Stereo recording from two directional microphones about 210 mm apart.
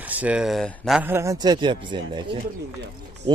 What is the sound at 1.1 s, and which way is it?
Speech, 15° right (ahead or behind).